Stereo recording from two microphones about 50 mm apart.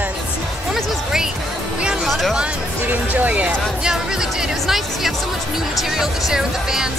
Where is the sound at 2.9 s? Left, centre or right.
Right.